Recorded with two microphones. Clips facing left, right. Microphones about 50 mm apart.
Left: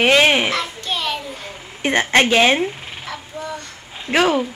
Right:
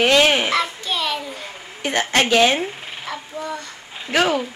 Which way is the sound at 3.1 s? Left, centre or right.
Centre.